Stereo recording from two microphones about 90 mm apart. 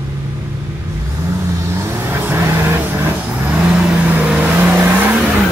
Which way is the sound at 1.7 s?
25° right (ahead or behind).